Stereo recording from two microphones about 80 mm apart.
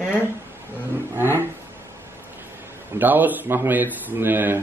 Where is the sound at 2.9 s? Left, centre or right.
Right.